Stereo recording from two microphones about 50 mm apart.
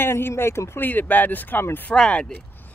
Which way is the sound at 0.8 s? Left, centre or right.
Left.